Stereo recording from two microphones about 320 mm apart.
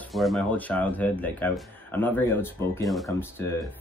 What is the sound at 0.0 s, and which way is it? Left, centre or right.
Speech, centre.